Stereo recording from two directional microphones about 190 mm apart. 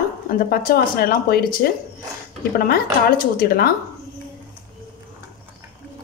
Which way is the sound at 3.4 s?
50° left (ahead or behind).